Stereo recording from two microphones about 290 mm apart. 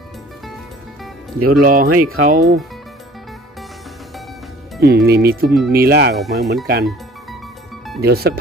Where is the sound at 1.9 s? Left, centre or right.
Right.